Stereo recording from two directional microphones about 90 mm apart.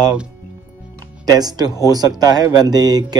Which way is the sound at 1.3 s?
45° right (ahead or behind).